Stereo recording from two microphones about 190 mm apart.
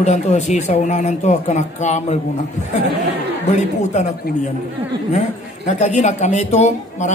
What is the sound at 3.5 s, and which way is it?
Speech, 35° left (ahead or behind).